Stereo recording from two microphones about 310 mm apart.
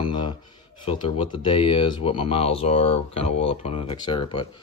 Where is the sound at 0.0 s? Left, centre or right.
Centre.